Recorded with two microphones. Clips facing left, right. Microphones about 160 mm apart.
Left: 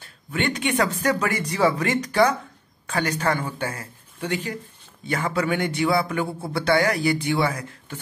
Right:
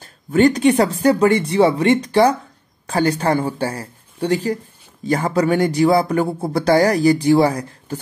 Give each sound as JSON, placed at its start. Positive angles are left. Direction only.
{"t": 0.0, "sound": "speech", "side_deg": -40}